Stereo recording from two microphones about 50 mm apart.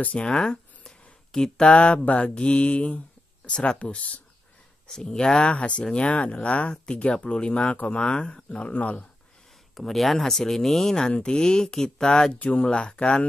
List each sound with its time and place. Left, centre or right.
0.0 s speech: left
4.8 s speech: centre
9.8 s speech: centre; by 13.2 s left